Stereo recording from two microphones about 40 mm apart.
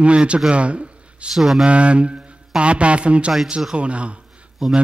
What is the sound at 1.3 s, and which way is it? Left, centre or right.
Speech, centre.